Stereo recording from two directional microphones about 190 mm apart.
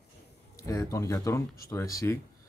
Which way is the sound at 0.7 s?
15° left (ahead or behind).